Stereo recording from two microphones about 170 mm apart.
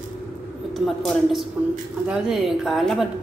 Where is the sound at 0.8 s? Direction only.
Centre (ahead or behind).